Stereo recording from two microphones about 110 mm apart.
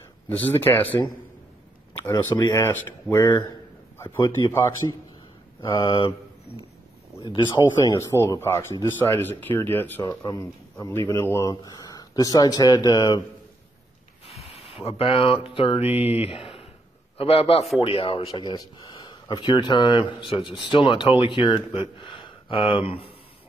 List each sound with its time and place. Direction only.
0.3 s speech: 15° left (ahead or behind)
2.5 s speech: 25° left (ahead or behind)
5.6 s speech: 45° left (ahead or behind)
7.9 s speech: 30° left (ahead or behind)
10.0 s speech: 35° left (ahead or behind)
10.9 s speech: 20° left (ahead or behind); by 13.2 s 40° left (ahead or behind)
14.2 s a sound: 55° left (ahead or behind)
16.0 s a man's voice: 60° left (ahead or behind)